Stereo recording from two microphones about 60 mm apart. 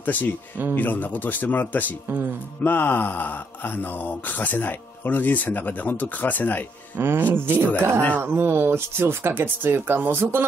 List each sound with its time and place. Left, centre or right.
0.0 s speech: left
2.0 s speech: right
2.6 s speech: left
7.0 s speech: right
8.2 s speech: right